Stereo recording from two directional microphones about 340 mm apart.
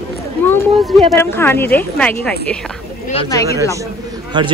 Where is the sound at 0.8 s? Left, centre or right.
Centre.